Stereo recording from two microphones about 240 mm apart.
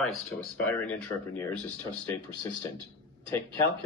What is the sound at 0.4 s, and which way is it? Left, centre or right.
Speech, centre.